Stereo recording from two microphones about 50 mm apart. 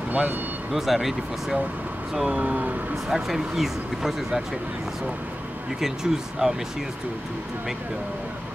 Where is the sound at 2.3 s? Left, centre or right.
Right.